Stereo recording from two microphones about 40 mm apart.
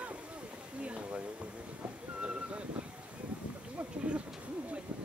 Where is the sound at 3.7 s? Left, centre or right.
Right.